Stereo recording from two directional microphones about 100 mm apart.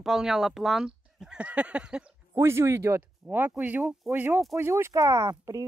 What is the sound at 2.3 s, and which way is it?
Speech, 25° right (ahead or behind).